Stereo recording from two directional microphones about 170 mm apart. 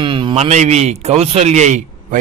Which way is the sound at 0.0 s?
30° right (ahead or behind).